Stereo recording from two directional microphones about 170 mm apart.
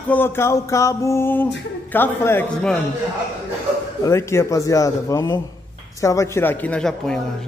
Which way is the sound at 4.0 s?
15° left (ahead or behind).